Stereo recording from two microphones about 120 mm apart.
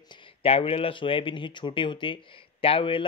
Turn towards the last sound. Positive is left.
turn(degrees=45)  # may be behind; listen again after turning